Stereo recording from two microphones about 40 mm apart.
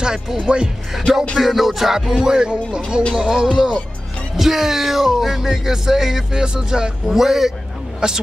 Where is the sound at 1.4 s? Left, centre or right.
Centre.